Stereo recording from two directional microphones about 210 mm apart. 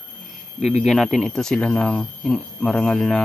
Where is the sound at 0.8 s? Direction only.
Centre (ahead or behind).